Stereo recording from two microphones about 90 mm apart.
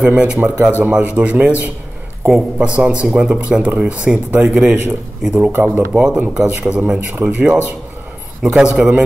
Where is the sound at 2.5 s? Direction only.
10° right (ahead or behind).